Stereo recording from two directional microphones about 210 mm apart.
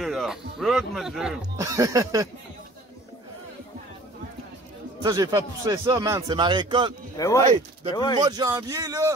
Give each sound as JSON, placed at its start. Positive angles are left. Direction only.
{"t": 0.0, "sound": "speech", "side_deg": 0}
{"t": 1.6, "sound": "speech", "side_deg": -15}
{"t": 5.0, "sound": "a man's voice", "side_deg": -15}
{"t": 7.2, "sound": "speech", "side_deg": 15}
{"t": 8.2, "sound": "speech", "side_deg": -20}